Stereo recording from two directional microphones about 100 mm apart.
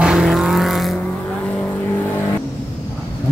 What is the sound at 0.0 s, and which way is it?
Vehicle, 10° right (ahead or behind).